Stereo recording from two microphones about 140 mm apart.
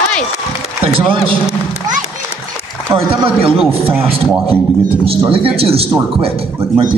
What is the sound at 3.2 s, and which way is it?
A man's voice, 40° right (ahead or behind).